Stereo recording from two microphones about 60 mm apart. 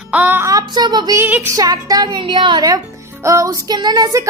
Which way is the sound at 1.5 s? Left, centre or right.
Right.